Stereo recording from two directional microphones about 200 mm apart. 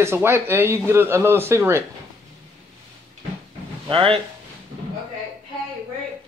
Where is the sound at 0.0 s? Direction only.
15° right (ahead or behind).